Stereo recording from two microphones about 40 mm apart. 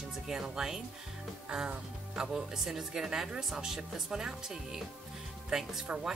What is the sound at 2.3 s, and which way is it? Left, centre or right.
Speech, centre.